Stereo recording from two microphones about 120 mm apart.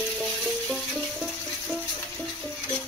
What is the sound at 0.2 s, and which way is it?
Music, 5° left (ahead or behind).